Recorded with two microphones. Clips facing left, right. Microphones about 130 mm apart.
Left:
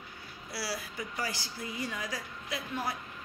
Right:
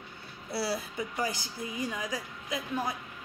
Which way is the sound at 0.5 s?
25° right (ahead or behind).